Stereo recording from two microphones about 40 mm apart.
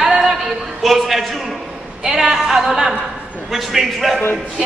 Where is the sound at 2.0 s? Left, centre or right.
Centre.